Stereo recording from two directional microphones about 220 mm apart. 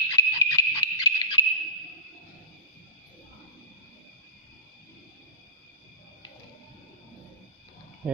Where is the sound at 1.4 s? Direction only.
15° left (ahead or behind).